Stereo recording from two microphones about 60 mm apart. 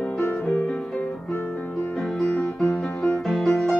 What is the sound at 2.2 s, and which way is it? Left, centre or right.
Music, centre.